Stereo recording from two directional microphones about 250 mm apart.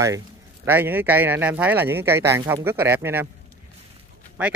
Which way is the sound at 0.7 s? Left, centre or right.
Centre.